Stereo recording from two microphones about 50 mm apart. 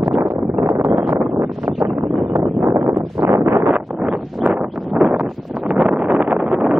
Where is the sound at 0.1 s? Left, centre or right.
Centre.